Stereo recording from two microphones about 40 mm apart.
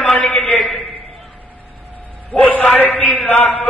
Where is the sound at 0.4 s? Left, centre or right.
Left.